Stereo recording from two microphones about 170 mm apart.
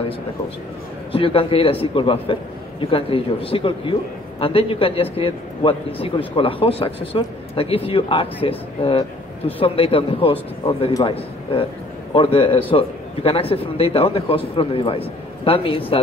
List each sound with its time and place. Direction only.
1.1 s a man's voice: 30° left (ahead or behind)